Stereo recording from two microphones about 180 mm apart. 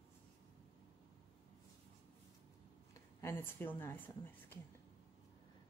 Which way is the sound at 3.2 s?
15° left (ahead or behind).